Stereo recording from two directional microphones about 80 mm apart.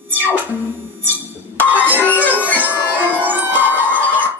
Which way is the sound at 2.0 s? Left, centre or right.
Left.